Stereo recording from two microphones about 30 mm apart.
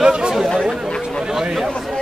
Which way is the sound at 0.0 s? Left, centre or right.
Right.